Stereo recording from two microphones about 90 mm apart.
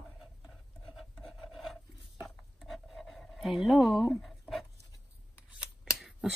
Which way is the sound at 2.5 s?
Centre (ahead or behind).